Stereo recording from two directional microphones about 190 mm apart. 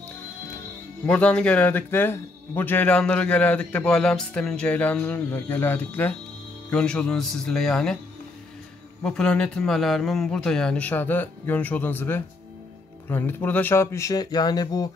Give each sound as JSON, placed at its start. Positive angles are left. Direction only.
{"t": 1.0, "sound": "speech", "side_deg": 5}
{"t": 9.0, "sound": "speech", "side_deg": 5}